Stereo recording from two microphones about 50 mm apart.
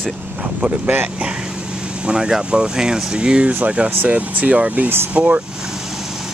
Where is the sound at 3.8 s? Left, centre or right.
Right.